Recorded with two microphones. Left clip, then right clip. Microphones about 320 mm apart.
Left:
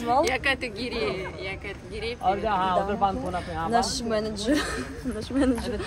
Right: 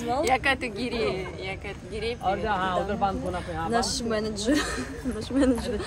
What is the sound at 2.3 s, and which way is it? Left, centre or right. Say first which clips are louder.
Speech: left 3 dB; centre.